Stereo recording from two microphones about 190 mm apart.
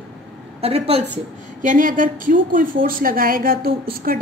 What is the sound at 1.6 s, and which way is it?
A woman's voice, 45° right (ahead or behind).